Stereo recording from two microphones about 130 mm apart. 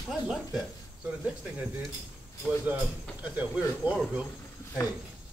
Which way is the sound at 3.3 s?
10° right (ahead or behind).